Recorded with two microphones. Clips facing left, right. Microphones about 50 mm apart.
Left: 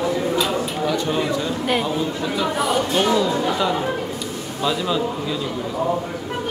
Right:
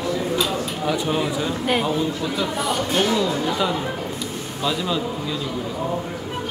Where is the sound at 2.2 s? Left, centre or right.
Centre.